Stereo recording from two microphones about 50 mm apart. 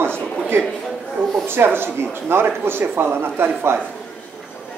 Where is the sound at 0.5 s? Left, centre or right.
Right.